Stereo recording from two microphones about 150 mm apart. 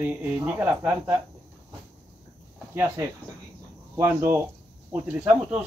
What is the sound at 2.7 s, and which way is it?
Speech, 20° right (ahead or behind).